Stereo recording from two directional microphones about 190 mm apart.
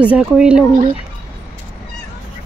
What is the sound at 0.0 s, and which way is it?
Speech, 5° right (ahead or behind).